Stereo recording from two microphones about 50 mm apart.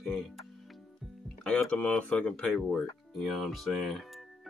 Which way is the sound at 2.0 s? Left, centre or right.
Left.